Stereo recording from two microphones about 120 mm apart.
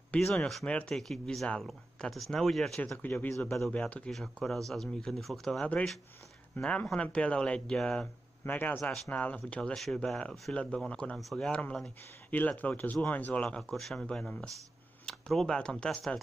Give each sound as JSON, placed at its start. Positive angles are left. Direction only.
{"t": 0.1, "sound": "speech", "side_deg": 5}
{"t": 3.0, "sound": "speech", "side_deg": 15}
{"t": 3.5, "sound": "speech", "side_deg": 0}
{"t": 8.5, "sound": "speech", "side_deg": 15}
{"t": 8.7, "sound": "speech", "side_deg": 5}